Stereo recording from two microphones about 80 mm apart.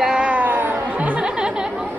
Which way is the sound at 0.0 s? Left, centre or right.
Centre.